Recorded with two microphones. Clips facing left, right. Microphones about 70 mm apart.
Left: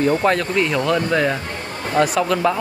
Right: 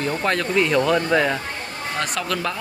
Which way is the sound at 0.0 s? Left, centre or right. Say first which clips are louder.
Left 5 dB; centre.